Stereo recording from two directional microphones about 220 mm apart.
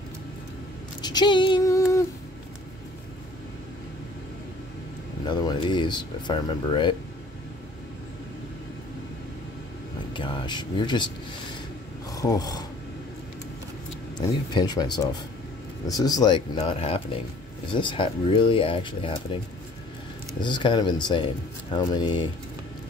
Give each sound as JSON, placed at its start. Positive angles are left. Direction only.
{"t": 1.0, "sound": "a sound", "side_deg": 20}
{"t": 5.2, "sound": "speech", "side_deg": 20}
{"t": 10.1, "sound": "speech", "side_deg": 20}
{"t": 12.1, "sound": "filing", "side_deg": 15}
{"t": 14.1, "sound": "speech", "side_deg": 20}
{"t": 20.3, "sound": "speech", "side_deg": 20}